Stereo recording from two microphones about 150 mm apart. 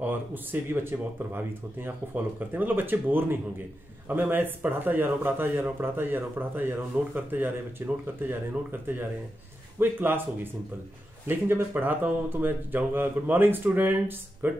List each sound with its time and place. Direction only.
0.0 s speech: 15° right (ahead or behind)
9.8 s speech: 15° right (ahead or behind)